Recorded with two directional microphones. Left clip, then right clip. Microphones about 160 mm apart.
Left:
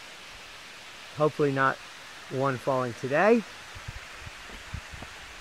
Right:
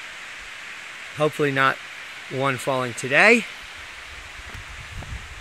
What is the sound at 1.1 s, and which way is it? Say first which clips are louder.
Speech: right 4 dB; 15° right (ahead or behind).